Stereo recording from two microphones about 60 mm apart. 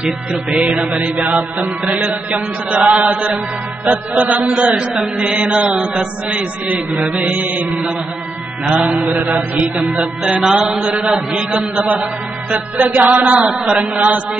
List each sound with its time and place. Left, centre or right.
0.7 s chant: right
5.2 s mantra: centre
6.3 s chant: right
10.4 s mantra: centre
11.3 s chant: centre
13.5 s mantra: centre
13.9 s chant: right